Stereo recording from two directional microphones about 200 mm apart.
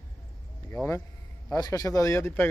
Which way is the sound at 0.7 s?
15° left (ahead or behind).